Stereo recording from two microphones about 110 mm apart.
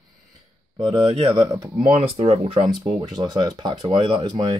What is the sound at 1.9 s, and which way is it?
Speech, 75° right (ahead or behind).